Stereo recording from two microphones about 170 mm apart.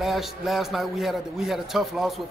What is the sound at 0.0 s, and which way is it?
Speech, centre (ahead or behind).